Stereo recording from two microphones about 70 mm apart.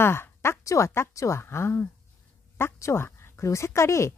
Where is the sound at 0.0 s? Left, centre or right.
Left.